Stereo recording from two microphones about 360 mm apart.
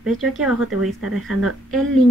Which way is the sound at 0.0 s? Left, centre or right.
Centre.